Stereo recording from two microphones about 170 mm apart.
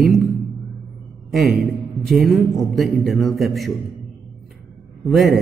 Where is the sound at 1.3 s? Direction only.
Centre (ahead or behind).